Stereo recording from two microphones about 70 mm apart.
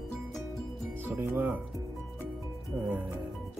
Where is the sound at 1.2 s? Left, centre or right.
Right.